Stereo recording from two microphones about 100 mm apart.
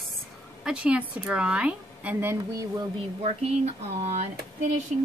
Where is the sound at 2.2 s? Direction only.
30° right (ahead or behind).